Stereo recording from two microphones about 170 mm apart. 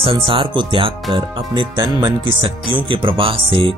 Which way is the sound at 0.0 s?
30° right (ahead or behind).